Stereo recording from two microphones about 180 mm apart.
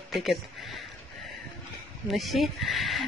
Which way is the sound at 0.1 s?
Centre (ahead or behind).